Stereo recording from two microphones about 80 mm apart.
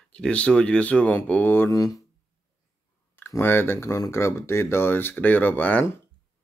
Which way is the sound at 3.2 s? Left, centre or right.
Left.